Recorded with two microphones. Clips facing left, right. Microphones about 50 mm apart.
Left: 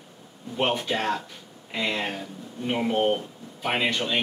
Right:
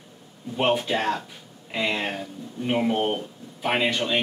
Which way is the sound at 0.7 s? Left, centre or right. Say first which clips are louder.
Right 2 dB; centre.